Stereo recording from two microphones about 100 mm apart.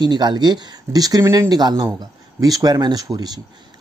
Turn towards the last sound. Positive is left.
turn(degrees=-40)  # may be behind; listen again after turning